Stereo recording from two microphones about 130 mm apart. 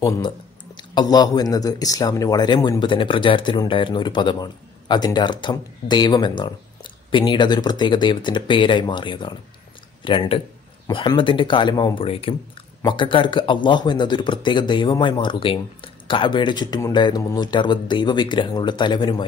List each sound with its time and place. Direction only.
0.0 s speech: 30° left (ahead or behind)